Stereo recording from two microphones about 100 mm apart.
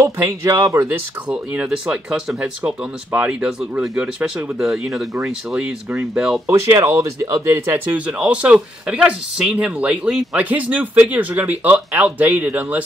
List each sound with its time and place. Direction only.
0.0 s speech: 30° right (ahead or behind)
1.3 s speech: 10° right (ahead or behind)
5.5 s speech: 15° right (ahead or behind)
6.4 s speech: 25° right (ahead or behind)
7.5 s speech: 25° right (ahead or behind)
8.1 s speech: 10° right (ahead or behind)